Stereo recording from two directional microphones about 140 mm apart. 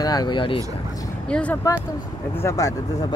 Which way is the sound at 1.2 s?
5° left (ahead or behind).